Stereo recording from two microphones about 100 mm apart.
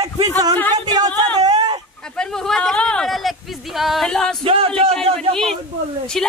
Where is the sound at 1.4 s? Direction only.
40° right (ahead or behind).